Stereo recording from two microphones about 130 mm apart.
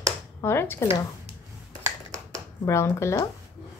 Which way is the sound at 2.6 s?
20° left (ahead or behind).